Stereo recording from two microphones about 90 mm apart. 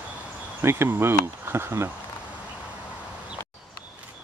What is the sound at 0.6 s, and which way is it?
Speech, 30° right (ahead or behind).